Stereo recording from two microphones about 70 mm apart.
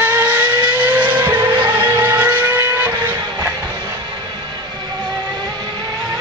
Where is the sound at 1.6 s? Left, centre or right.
Right.